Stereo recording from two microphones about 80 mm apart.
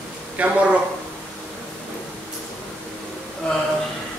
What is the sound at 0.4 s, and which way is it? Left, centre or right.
Speech, centre.